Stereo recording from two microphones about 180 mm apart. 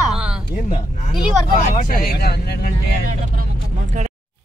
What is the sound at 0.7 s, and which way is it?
Speech, 35° left (ahead or behind).